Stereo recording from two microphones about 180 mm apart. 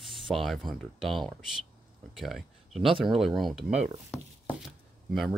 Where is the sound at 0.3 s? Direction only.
Centre (ahead or behind).